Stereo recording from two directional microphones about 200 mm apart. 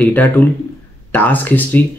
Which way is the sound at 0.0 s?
10° left (ahead or behind).